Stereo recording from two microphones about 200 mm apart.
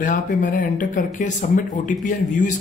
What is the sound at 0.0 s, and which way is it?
Speech, 40° left (ahead or behind).